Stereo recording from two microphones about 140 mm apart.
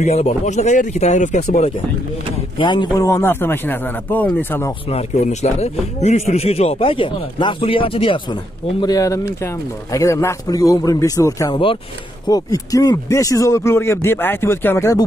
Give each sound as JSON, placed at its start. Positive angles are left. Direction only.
{"t": 0.0, "sound": "speech", "side_deg": 55}
{"t": 2.6, "sound": "speech", "side_deg": 35}
{"t": 4.8, "sound": "speech", "side_deg": 50}
{"t": 8.8, "sound": "speech", "side_deg": 25}
{"t": 11.5, "sound": "speech", "side_deg": 40}
{"t": 12.3, "sound": "speech", "side_deg": 25}